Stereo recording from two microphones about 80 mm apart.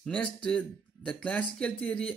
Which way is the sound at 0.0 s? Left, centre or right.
Centre.